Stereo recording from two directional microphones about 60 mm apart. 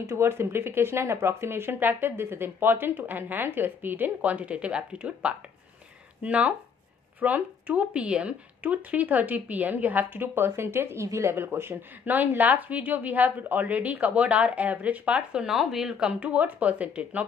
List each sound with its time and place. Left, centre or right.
0.0 s speech: right
11.3 s speech: right
12.1 s speech: right
15.4 s speech: centre
16.1 s speech: right